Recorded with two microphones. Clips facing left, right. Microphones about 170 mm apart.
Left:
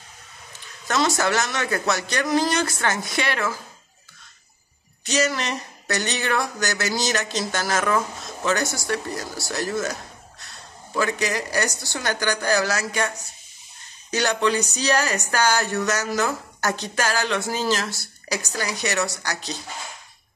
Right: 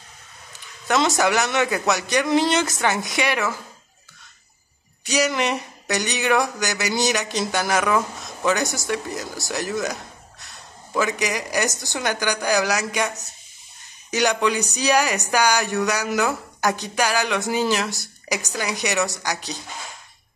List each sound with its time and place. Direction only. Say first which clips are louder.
0.8 s speech: right 2 dB; 20° right (ahead or behind)
5.0 s speech: right 2 dB; 15° right (ahead or behind)